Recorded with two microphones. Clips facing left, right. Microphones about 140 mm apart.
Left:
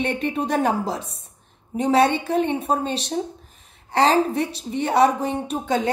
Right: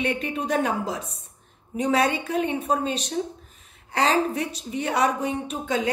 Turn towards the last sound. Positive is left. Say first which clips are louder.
# left 3 dB
turn(degrees=35)  # may be behind; listen again after turning